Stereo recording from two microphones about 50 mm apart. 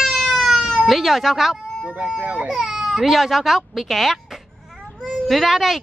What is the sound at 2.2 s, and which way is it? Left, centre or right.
Speech, right.